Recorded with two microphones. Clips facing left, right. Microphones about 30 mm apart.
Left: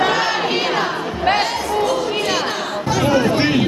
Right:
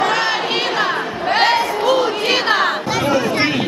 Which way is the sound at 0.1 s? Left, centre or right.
Centre.